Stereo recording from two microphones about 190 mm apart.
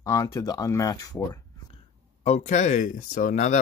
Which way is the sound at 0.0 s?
15° left (ahead or behind).